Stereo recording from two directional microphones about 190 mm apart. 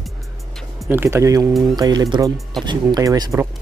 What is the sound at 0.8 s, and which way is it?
Speech, 10° right (ahead or behind).